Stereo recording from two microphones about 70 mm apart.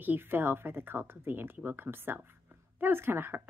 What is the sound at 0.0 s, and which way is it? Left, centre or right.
A woman's voice, right.